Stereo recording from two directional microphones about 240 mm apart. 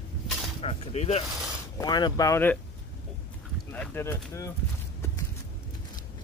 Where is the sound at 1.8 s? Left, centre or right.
Centre.